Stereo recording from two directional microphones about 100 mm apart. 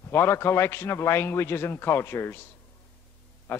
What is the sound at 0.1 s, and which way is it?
A man's voice, 25° left (ahead or behind).